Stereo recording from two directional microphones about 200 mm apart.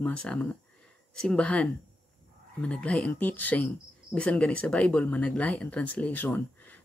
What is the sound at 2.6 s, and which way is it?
Cricket, 5° left (ahead or behind).